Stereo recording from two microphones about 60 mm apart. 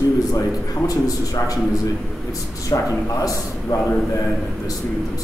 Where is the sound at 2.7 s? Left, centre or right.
Left.